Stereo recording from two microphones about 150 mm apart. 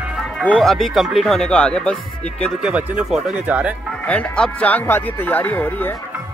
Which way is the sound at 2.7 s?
10° right (ahead or behind).